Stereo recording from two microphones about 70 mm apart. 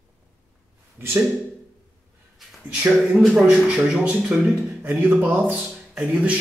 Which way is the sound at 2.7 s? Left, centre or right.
Centre.